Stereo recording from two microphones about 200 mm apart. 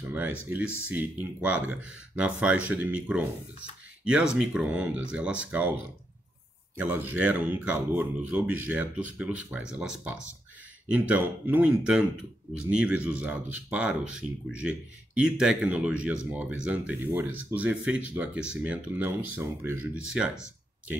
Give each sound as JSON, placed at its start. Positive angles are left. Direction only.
{"t": 0.1, "sound": "speech", "side_deg": -5}
{"t": 6.8, "sound": "speech", "side_deg": -10}